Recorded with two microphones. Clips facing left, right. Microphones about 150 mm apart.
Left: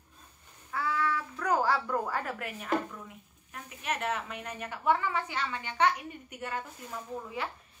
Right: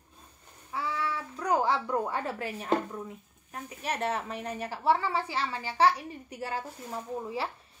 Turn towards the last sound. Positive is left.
turn(degrees=-35)  # may be behind; listen again after turning